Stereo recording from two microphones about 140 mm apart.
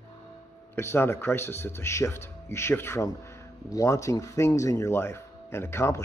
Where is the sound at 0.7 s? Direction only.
15° left (ahead or behind).